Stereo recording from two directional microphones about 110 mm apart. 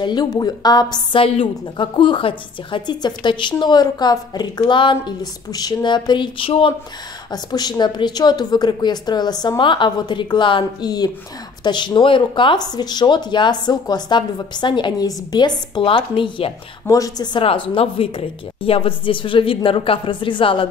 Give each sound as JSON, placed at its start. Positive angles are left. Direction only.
{"t": 0.0, "sound": "speech", "side_deg": 40}
{"t": 1.2, "sound": "a woman's voice", "side_deg": 55}
{"t": 7.2, "sound": "a woman's voice", "side_deg": 35}
{"t": 16.9, "sound": "speech", "side_deg": 35}
{"t": 17.4, "sound": "a woman's voice", "side_deg": 55}